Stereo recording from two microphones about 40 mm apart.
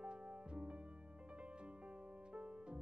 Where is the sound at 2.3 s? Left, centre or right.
Right.